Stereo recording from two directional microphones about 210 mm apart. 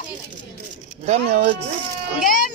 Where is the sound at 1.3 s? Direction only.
35° right (ahead or behind).